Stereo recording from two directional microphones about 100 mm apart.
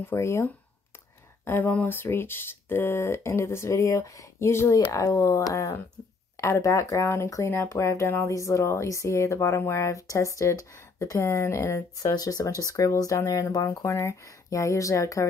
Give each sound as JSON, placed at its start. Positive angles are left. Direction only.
{"t": 0.0, "sound": "speech", "side_deg": 30}